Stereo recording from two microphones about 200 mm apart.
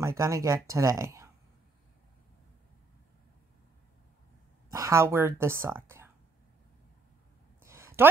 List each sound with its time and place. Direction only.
0.0 s speech: 15° right (ahead or behind)
4.6 s speech: 15° right (ahead or behind)
7.6 s a sound: 15° right (ahead or behind)